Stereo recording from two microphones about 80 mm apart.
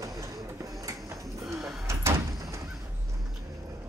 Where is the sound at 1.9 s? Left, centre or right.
Right.